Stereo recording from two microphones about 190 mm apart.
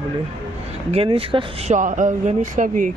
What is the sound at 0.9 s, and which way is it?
Speech, 30° right (ahead or behind).